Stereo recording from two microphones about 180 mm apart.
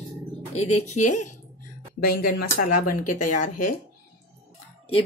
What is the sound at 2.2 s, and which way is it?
Speech, 55° left (ahead or behind).